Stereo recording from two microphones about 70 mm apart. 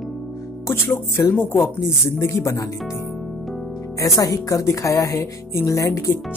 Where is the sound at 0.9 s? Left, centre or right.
Left.